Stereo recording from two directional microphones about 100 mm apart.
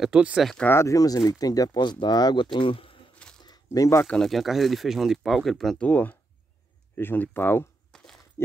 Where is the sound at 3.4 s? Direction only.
40° left (ahead or behind).